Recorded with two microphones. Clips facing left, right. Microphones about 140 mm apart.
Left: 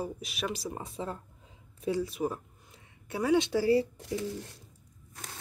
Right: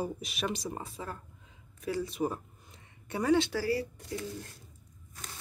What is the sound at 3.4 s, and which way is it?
Speech, 20° left (ahead or behind).